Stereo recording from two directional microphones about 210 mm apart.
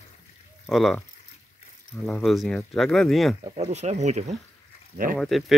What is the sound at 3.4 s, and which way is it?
Speech, 25° right (ahead or behind).